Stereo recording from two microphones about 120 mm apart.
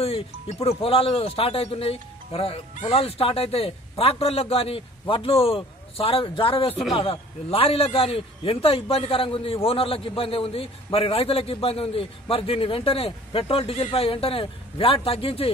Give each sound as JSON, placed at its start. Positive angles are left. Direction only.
{"t": 0.0, "sound": "speech", "side_deg": 55}